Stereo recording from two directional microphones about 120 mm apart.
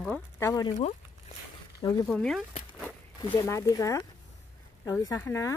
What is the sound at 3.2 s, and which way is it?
Speech, 30° left (ahead or behind).